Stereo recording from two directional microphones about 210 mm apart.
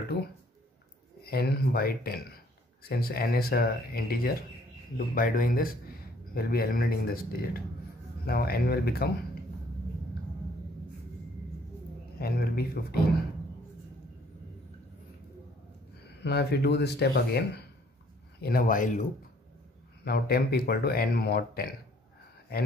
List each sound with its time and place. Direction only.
0.1 s a sound: 50° left (ahead or behind)
1.2 s speech: 45° left (ahead or behind)
12.2 s speech: 45° left (ahead or behind)
16.0 s speech: 50° left (ahead or behind)
18.4 s speech: 40° left (ahead or behind)
20.1 s speech: 50° left (ahead or behind)